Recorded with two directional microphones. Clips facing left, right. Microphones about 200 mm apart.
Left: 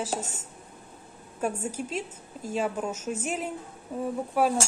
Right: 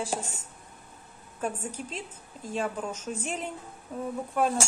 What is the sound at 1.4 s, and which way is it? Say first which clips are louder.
A woman's voice: left 3 dB; 10° left (ahead or behind).